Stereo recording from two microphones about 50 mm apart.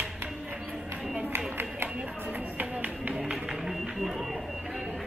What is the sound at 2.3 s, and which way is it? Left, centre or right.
Music, right.